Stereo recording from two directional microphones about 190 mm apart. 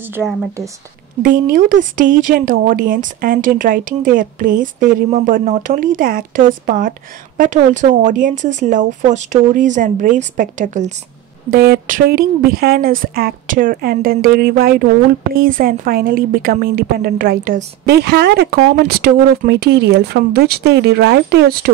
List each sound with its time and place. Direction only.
1.2 s a woman's voice: 45° right (ahead or behind)